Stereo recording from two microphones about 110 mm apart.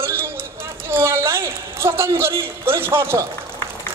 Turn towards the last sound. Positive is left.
turn(degrees=-20)  # may be behind; listen again after turning